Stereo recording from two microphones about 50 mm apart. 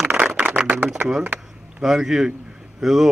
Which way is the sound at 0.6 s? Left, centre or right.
Right.